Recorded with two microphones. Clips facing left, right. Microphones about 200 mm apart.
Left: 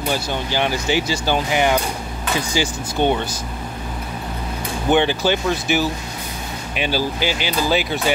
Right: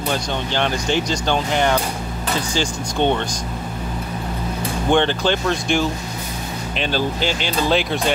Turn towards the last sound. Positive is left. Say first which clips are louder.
# right 1 dB
turn(degrees=5)  # may be behind; listen again after turning